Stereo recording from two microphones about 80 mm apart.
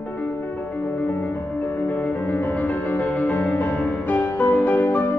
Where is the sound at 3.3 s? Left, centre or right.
Left.